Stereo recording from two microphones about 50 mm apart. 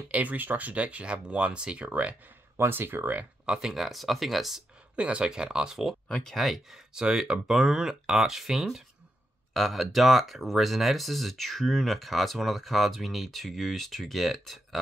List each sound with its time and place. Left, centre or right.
0.1 s speech: right
2.5 s speech: right
3.5 s speech: centre
4.9 s speech: right
6.2 s speech: centre
6.9 s speech: centre